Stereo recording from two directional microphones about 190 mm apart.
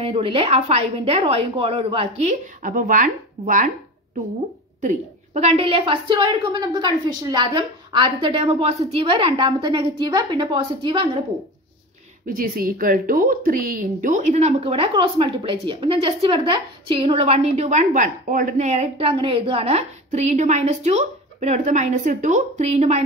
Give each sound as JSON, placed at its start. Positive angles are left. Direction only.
{"t": 0.0, "sound": "a woman's voice", "side_deg": -30}
{"t": 4.8, "sound": "a woman's voice", "side_deg": -35}
{"t": 12.3, "sound": "a woman's voice", "side_deg": -50}